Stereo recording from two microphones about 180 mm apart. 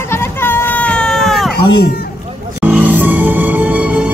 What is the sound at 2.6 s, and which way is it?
Music, 10° right (ahead or behind).